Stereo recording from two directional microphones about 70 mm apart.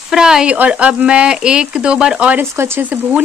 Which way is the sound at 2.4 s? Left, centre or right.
Right.